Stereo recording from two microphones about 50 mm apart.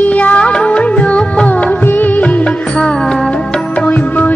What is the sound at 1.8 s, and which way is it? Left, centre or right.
Music, left.